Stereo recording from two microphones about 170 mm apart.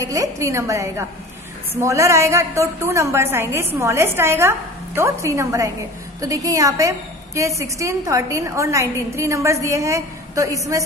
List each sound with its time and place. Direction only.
0.0 s a woman's voice: 20° right (ahead or behind)